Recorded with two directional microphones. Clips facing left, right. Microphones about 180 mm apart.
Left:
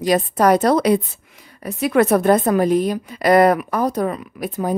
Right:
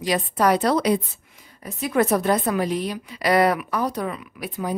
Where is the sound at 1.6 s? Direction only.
70° left (ahead or behind).